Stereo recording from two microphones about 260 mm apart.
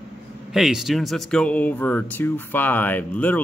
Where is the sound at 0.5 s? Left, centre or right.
Centre.